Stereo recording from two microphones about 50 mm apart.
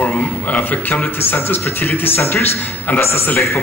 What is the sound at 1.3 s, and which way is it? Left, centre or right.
A man's voice, left.